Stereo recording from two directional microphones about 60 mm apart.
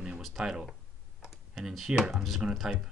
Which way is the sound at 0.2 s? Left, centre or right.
Centre.